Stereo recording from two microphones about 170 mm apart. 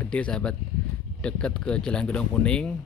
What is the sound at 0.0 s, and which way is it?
Speech, 5° left (ahead or behind).